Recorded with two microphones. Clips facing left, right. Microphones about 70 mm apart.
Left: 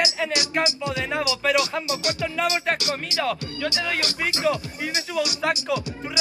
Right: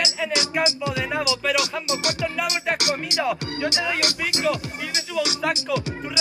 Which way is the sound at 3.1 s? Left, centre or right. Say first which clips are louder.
Right 2 dB; centre.